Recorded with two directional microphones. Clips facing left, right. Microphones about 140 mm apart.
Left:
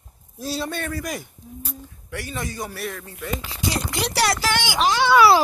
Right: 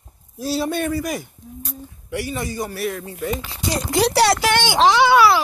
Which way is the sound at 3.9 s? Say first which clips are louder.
Right 9 dB; 35° right (ahead or behind).